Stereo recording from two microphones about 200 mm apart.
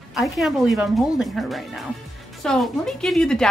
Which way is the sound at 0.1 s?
Centre (ahead or behind).